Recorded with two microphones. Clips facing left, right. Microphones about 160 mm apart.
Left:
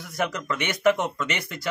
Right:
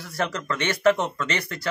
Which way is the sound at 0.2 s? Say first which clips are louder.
Right 1 dB; 15° left (ahead or behind).